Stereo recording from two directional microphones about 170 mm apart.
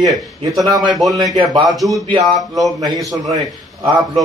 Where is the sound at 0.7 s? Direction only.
25° right (ahead or behind).